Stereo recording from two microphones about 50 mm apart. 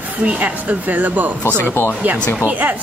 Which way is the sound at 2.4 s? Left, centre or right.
Right.